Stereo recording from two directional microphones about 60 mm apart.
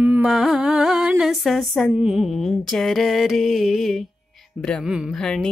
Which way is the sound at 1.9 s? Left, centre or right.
Centre.